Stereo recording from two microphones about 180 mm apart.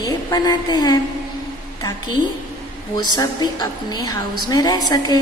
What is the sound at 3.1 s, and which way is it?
A woman's voice, 20° left (ahead or behind).